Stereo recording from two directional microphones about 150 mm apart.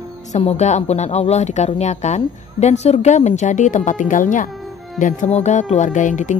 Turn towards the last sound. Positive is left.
turn(degrees=55)  # may be behind; listen again after turning